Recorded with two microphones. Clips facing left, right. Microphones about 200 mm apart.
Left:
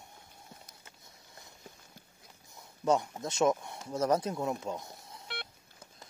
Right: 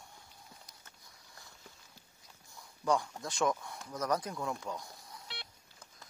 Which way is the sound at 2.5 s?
20° left (ahead or behind).